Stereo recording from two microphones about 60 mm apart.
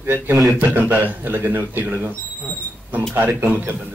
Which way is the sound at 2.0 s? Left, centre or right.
Right.